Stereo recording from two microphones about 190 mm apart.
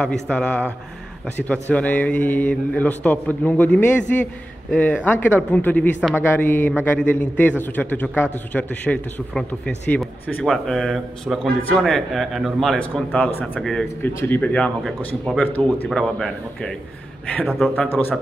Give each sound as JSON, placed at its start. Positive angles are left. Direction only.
{"t": 0.3, "sound": "a man's voice", "side_deg": 5}